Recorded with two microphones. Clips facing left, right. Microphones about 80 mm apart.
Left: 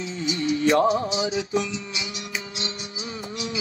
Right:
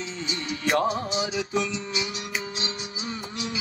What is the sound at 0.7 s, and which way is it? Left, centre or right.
Music, left.